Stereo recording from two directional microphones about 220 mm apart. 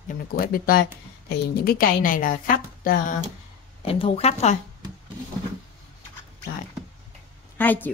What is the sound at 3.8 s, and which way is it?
Speech, 25° left (ahead or behind).